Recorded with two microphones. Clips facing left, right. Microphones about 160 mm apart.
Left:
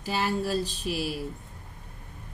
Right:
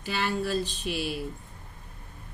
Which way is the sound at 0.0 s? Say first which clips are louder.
Left 1 dB; 35° left (ahead or behind).